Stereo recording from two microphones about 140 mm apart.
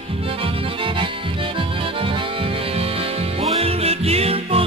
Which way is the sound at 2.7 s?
45° right (ahead or behind).